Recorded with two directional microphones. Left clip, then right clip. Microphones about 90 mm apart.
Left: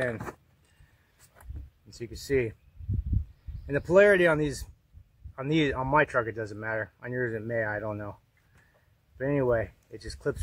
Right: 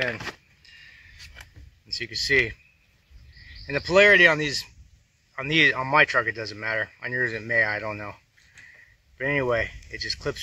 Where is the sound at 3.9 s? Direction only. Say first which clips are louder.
Right 4 dB; 20° left (ahead or behind).